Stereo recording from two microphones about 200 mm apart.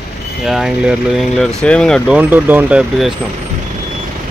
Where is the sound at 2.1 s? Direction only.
10° right (ahead or behind).